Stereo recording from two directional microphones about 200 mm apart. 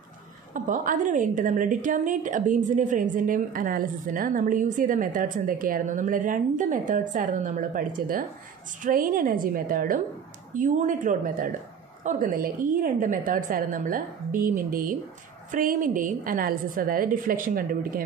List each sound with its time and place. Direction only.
0.7 s a woman's voice: 40° right (ahead or behind)